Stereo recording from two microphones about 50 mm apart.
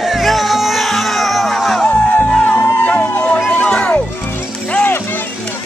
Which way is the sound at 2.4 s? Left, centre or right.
Left.